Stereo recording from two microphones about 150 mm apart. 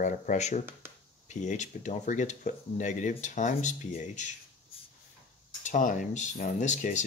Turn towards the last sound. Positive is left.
turn(degrees=55)  # may be behind; listen again after turning